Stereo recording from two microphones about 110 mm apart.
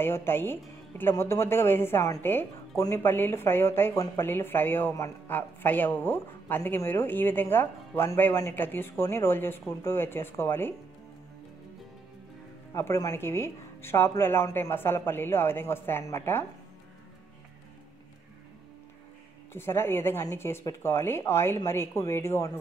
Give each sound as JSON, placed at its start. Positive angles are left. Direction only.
{"t": 0.0, "sound": "speech", "side_deg": 20}
{"t": 12.7, "sound": "speech", "side_deg": 25}
{"t": 19.5, "sound": "speech", "side_deg": 20}